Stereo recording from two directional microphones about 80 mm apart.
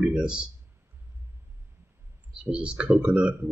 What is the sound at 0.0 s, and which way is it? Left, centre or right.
Speech, centre.